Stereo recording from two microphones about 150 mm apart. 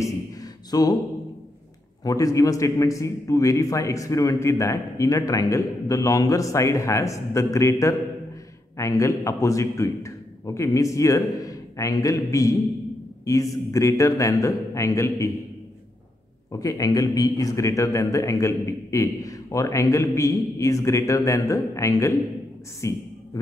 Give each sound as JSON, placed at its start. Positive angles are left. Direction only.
{"t": 0.7, "sound": "mantra", "side_deg": 25}
{"t": 2.0, "sound": "a man's voice", "side_deg": 20}
{"t": 16.5, "sound": "a man's voice", "side_deg": 25}